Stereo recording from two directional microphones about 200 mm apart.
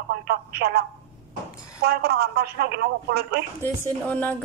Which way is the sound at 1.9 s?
55° right (ahead or behind).